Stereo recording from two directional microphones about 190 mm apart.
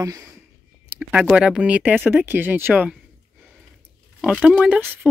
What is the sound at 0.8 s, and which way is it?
Speech, 5° right (ahead or behind).